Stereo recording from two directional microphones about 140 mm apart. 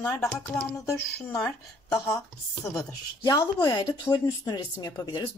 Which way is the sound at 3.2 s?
30° left (ahead or behind).